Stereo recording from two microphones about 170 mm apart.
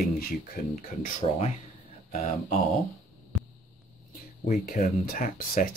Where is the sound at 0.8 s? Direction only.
50° left (ahead or behind).